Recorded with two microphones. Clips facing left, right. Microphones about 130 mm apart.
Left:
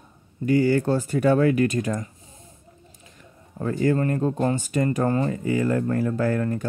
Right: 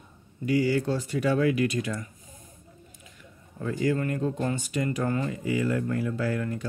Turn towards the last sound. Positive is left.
turn(degrees=45)  # may be behind; listen again after turning